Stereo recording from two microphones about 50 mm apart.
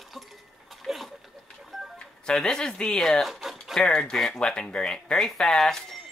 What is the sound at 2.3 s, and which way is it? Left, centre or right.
Speech, centre.